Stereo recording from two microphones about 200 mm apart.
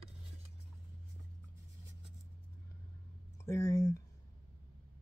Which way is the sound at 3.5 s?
15° left (ahead or behind).